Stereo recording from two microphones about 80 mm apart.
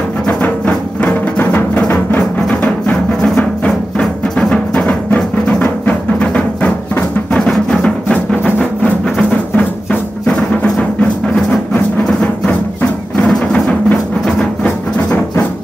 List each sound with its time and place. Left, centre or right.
0.3 s music: centre
3.3 s music: centre
13.5 s music: centre